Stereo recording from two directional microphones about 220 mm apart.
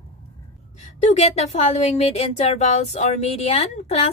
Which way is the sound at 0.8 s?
30° left (ahead or behind).